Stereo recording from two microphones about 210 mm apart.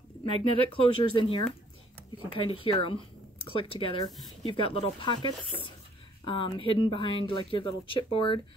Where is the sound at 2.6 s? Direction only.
25° left (ahead or behind).